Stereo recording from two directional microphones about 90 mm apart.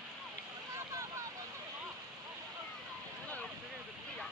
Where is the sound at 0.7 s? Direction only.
35° right (ahead or behind).